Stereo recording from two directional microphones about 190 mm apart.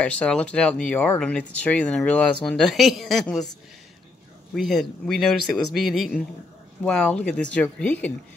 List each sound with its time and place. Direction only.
0.0 s speech: 5° left (ahead or behind)
4.6 s speech: centre (ahead or behind)